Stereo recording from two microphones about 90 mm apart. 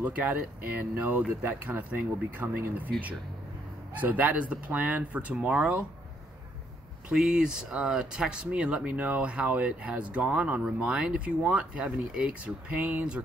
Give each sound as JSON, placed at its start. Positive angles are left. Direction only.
{"t": 0.0, "sound": "speech", "side_deg": -15}
{"t": 4.0, "sound": "speech", "side_deg": -15}
{"t": 7.1, "sound": "speech", "side_deg": -5}